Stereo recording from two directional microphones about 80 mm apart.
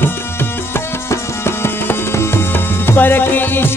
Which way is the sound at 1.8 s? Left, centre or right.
Left.